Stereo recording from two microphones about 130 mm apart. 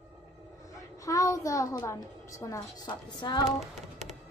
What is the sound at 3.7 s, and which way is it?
Music, 60° right (ahead or behind).